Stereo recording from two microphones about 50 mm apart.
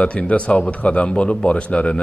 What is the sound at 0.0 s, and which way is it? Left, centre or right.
A man's voice, left.